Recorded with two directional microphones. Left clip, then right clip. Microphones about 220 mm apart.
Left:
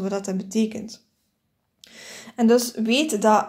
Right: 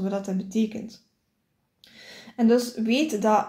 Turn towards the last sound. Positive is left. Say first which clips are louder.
# left 3 dB
turn(degrees=30)  # may be behind; listen again after turning